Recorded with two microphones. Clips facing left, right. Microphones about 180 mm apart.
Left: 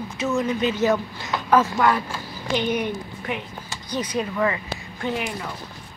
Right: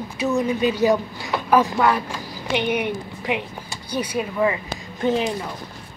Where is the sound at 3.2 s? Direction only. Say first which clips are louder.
Right 4 dB; 10° right (ahead or behind).